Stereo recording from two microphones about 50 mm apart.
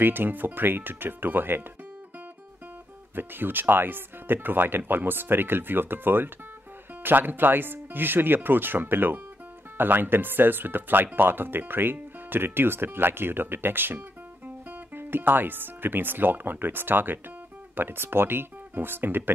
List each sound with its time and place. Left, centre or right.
0.0 s speech: right
3.2 s speech: right